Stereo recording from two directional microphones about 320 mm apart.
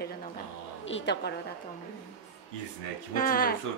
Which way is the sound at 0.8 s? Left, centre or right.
Left.